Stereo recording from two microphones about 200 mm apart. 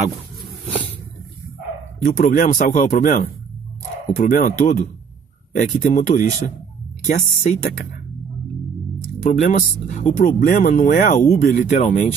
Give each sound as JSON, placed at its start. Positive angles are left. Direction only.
{"t": 2.0, "sound": "speech", "side_deg": 40}
{"t": 9.2, "sound": "speech", "side_deg": 35}